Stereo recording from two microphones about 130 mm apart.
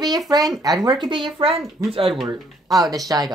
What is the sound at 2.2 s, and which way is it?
Speech, 30° right (ahead or behind).